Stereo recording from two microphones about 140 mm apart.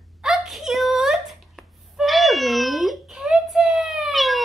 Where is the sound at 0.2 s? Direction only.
5° right (ahead or behind).